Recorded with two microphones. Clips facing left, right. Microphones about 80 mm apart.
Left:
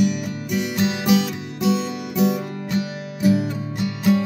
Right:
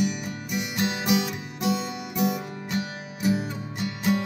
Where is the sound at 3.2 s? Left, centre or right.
Centre.